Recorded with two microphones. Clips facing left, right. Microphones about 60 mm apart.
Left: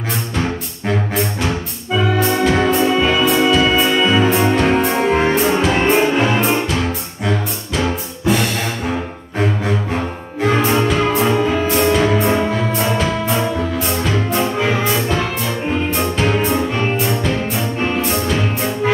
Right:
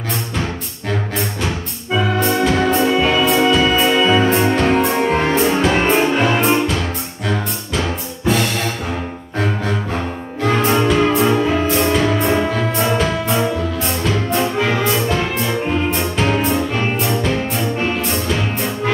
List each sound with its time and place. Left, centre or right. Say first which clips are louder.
1.1 s music: left 2 dB; centre
10.6 s music: right 4 dB; centre